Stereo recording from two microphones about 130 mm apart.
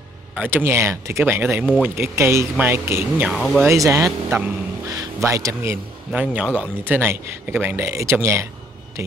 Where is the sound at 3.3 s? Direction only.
5° left (ahead or behind).